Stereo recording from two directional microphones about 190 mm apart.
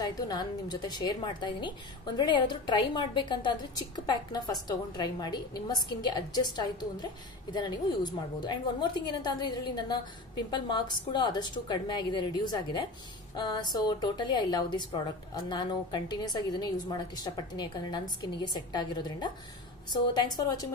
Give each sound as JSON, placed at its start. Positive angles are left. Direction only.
{"t": 0.0, "sound": "a woman's voice", "side_deg": 20}